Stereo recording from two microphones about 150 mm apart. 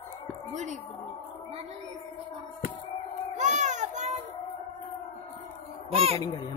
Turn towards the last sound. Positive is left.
turn(degrees=-40)  # may be behind; listen again after turning